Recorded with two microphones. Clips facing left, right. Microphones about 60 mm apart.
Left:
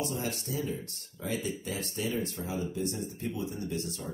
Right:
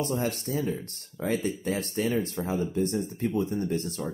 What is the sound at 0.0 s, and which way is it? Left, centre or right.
Speech, right.